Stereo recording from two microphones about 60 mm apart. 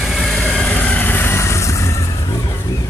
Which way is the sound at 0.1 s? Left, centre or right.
Centre.